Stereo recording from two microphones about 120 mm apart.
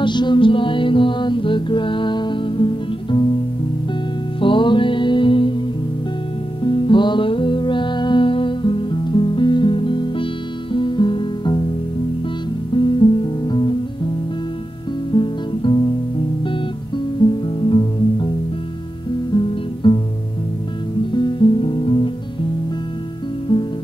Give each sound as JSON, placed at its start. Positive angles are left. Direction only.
{"t": 0.0, "sound": "music", "side_deg": 40}
{"t": 4.4, "sound": "music", "side_deg": 45}
{"t": 6.6, "sound": "music", "side_deg": 45}
{"t": 12.7, "sound": "music", "side_deg": 45}
{"t": 17.2, "sound": "music", "side_deg": 45}
{"t": 19.3, "sound": "guitar", "side_deg": 45}
{"t": 21.1, "sound": "music", "side_deg": 40}
{"t": 23.5, "sound": "music", "side_deg": 45}